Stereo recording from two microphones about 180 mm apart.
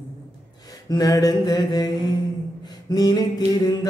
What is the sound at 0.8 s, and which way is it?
Music, 20° left (ahead or behind).